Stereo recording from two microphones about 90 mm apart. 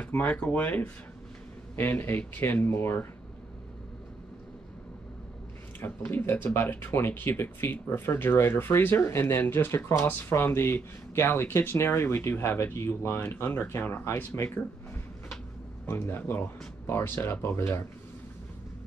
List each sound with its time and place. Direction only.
0.0 s speech: 15° left (ahead or behind)
5.8 s speech: 25° left (ahead or behind)
15.9 s speech: 25° left (ahead or behind)